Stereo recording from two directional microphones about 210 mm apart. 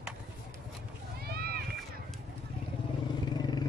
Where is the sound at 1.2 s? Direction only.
45° right (ahead or behind).